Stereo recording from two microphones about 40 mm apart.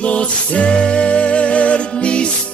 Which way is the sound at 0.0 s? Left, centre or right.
Left.